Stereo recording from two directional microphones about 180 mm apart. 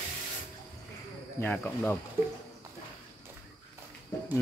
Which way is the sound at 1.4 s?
10° left (ahead or behind).